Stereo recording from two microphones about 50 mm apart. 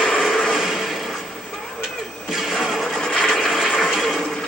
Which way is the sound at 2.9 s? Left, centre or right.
Centre.